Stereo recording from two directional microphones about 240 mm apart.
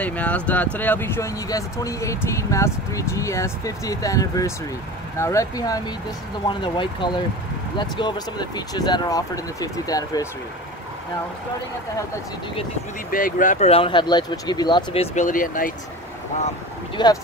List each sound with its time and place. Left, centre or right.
0.0 s speech: centre
13.1 s speech: left
16.9 s speech: centre